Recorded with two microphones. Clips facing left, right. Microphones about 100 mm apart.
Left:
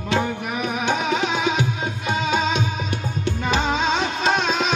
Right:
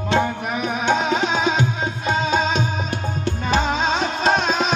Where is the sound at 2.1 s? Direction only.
35° right (ahead or behind).